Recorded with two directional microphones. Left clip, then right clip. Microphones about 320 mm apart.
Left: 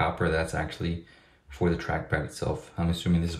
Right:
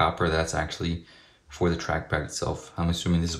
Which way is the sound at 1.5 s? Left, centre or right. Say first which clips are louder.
Right 2 dB; centre.